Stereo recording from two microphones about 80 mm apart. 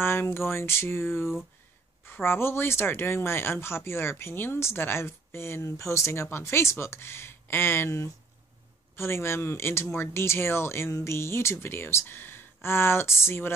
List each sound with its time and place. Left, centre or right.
0.0 s speech: left